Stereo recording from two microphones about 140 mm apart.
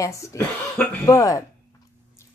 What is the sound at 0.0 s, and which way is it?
A woman's voice, 25° left (ahead or behind).